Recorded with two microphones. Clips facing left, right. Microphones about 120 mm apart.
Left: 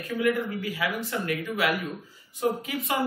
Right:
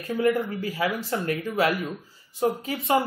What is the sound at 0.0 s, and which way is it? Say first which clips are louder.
Speech: right 2 dB; 35° right (ahead or behind).